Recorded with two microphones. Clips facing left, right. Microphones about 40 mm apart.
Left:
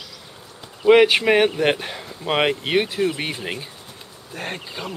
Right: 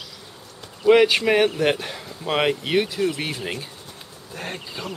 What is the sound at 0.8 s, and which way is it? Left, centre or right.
Speech, centre.